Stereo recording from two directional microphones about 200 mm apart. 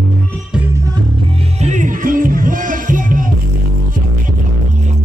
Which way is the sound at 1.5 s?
35° right (ahead or behind).